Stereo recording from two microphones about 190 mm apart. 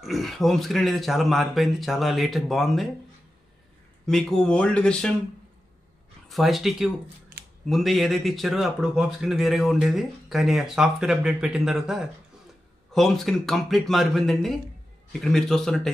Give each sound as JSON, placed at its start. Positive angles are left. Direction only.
{"t": 0.0, "sound": "speech", "side_deg": 0}
{"t": 4.0, "sound": "speech", "side_deg": 5}
{"t": 6.2, "sound": "speech", "side_deg": 0}